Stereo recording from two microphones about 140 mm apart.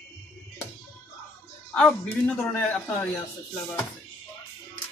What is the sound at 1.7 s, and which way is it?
Speech, 5° left (ahead or behind).